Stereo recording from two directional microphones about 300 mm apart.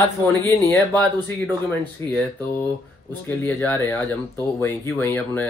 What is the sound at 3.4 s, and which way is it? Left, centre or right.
Speech, centre.